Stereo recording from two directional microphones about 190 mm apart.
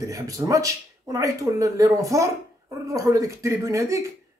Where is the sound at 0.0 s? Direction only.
15° right (ahead or behind).